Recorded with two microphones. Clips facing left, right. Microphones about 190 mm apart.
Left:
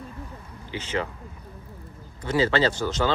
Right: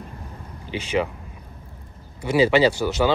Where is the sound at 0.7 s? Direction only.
15° right (ahead or behind).